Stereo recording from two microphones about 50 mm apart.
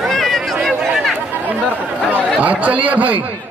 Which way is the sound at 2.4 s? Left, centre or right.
Right.